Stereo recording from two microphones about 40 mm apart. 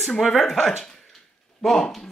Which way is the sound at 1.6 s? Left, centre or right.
Centre.